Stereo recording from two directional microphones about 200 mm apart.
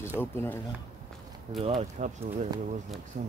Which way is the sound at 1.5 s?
30° right (ahead or behind).